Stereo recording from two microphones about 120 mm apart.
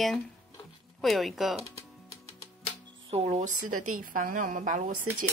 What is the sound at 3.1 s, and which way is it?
Speech, 55° right (ahead or behind).